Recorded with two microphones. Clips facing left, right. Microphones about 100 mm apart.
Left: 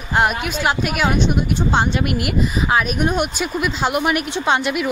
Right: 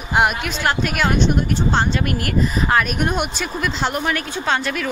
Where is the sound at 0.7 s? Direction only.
5° left (ahead or behind).